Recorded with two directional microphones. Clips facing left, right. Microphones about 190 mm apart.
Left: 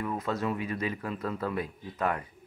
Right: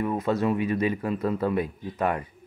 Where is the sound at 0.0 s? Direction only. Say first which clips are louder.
Right 6 dB; 25° right (ahead or behind).